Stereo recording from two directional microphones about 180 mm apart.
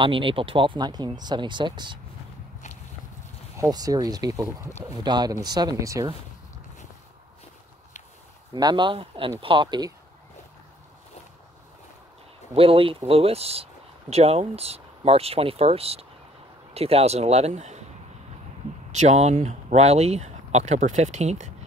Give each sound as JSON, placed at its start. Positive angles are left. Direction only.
{"t": 0.0, "sound": "speech", "side_deg": -30}
{"t": 3.5, "sound": "speech", "side_deg": -20}
{"t": 8.5, "sound": "speech", "side_deg": -25}
{"t": 12.5, "sound": "speech", "side_deg": -30}
{"t": 18.9, "sound": "speech", "side_deg": -40}